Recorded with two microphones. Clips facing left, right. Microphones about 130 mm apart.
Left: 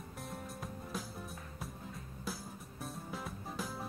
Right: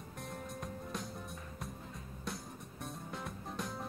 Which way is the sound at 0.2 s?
Centre (ahead or behind).